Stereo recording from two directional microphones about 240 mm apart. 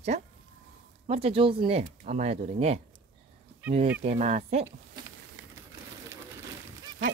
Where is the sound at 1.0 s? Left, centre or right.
Right.